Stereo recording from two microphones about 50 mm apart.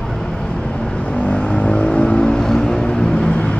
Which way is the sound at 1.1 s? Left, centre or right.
Left.